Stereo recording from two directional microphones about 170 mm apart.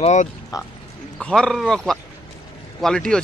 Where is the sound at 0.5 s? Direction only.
20° left (ahead or behind).